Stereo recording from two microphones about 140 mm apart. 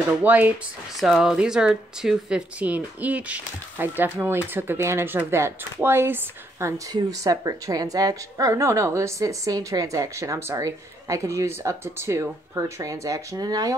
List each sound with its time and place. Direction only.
0.2 s speech: 10° right (ahead or behind)
6.9 s a woman's voice: 30° right (ahead or behind)